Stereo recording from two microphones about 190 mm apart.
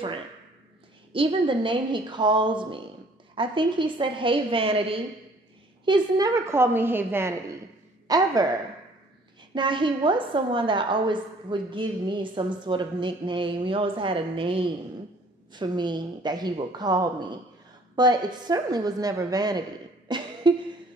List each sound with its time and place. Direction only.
1.1 s a woman's voice: 25° right (ahead or behind)
9.5 s a woman's voice: 25° right (ahead or behind)
20.1 s cough: 25° right (ahead or behind)